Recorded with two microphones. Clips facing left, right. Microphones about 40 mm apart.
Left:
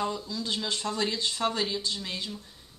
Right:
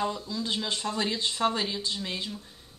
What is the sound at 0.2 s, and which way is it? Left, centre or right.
A woman's voice, centre.